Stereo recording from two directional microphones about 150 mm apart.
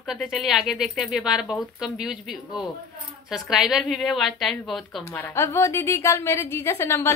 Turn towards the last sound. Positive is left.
turn(degrees=20)  # may be behind; listen again after turning